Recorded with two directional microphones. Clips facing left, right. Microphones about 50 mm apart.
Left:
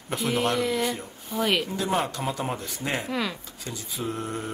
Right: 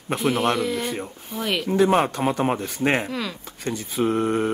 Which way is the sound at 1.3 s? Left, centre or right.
Centre.